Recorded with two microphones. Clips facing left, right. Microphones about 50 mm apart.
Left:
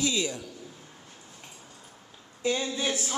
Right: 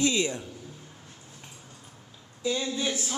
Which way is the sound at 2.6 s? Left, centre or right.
Centre.